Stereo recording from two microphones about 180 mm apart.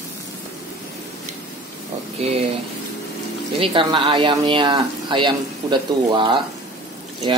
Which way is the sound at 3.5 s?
30° right (ahead or behind).